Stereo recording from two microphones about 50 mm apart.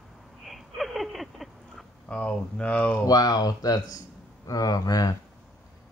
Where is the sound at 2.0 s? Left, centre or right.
Left.